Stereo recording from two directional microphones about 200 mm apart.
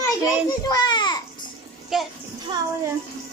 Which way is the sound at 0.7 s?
20° left (ahead or behind).